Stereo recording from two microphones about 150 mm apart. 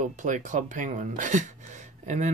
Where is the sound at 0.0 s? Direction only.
55° right (ahead or behind).